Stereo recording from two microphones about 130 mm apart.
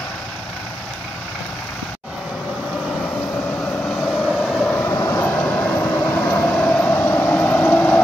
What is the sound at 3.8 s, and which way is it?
Vehicle, 5° left (ahead or behind).